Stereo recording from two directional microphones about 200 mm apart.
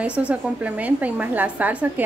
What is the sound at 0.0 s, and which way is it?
A woman's voice, 5° right (ahead or behind).